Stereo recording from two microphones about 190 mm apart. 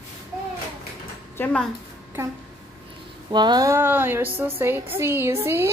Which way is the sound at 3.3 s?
25° right (ahead or behind).